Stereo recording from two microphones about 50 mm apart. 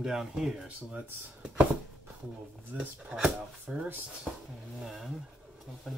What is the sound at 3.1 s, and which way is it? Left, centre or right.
Speech, centre.